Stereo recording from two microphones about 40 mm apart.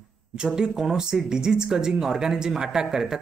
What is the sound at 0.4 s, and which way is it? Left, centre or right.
Speech, centre.